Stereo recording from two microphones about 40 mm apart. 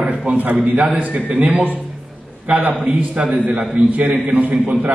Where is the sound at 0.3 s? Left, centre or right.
Right.